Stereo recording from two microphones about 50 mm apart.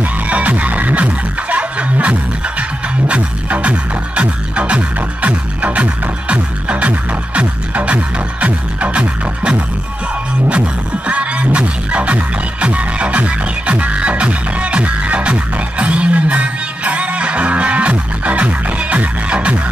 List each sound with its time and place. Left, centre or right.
0.0 s music: right